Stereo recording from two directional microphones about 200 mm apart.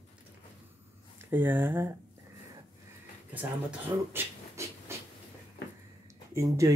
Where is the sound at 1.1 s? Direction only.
10° right (ahead or behind).